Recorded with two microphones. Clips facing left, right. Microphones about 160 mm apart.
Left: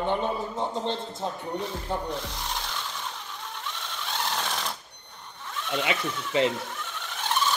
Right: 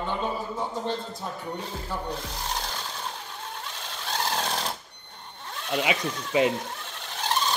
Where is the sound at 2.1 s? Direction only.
40° right (ahead or behind).